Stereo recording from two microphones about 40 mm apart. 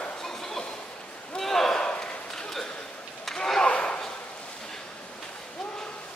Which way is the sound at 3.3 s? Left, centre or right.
Centre.